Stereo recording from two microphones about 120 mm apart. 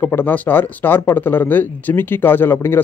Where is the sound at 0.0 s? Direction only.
15° left (ahead or behind).